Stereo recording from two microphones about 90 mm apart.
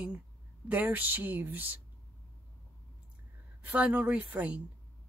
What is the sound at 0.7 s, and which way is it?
Speech, 20° right (ahead or behind).